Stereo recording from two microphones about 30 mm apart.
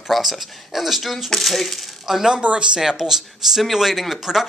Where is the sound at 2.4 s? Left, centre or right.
Right.